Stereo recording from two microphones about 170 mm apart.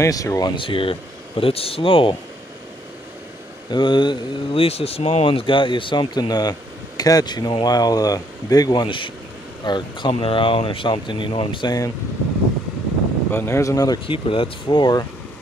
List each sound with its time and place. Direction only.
0.0 s speech: 20° left (ahead or behind)
0.6 s speech: 30° left (ahead or behind)
3.7 s speech: 25° left (ahead or behind)
13.3 s speech: 15° left (ahead or behind)